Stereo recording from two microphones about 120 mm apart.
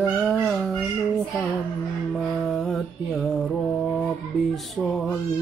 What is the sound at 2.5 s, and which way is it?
Mantra, centre (ahead or behind).